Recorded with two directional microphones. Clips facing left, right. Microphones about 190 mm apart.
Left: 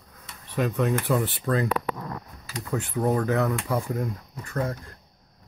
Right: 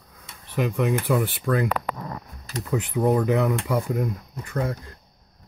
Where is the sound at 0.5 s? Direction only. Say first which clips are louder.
Right 1 dB; 10° right (ahead or behind).